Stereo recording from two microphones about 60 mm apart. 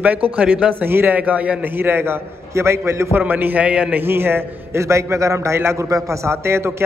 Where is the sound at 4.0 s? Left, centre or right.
Right.